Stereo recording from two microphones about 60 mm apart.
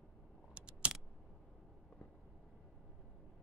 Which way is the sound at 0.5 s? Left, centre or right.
Centre.